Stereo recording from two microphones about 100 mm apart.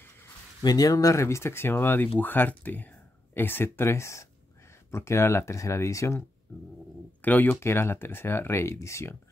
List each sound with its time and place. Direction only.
0.6 s speech: 40° left (ahead or behind)